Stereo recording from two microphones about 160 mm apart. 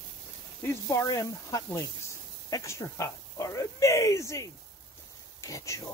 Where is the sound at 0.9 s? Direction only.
20° left (ahead or behind).